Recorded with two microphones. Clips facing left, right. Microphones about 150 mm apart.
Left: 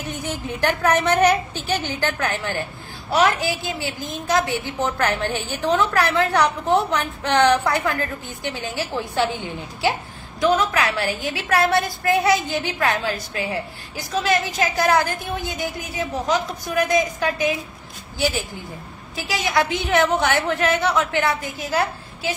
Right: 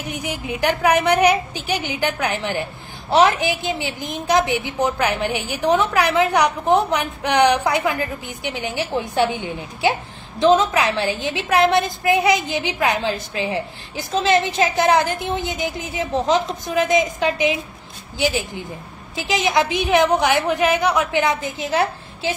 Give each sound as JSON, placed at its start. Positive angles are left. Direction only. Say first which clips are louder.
{"t": 0.0, "sound": "a woman's voice", "louder": "right 1 dB", "side_deg": -10}
{"t": 19.1, "sound": "a woman's voice", "louder": "right 3 dB", "side_deg": -20}